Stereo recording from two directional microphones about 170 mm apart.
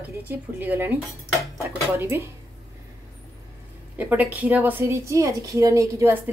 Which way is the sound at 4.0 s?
10° right (ahead or behind).